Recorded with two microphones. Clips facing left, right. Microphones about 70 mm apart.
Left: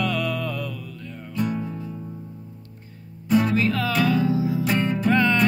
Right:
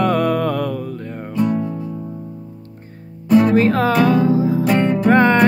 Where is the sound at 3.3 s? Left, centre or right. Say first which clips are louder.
Right 8 dB; right.